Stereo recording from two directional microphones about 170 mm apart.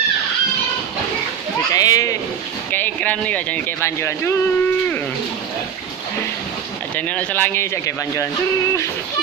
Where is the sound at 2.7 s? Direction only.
10° left (ahead or behind).